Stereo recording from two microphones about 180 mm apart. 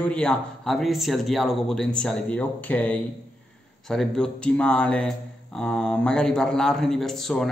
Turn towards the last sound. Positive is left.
turn(degrees=0)  # may be behind; listen again after turning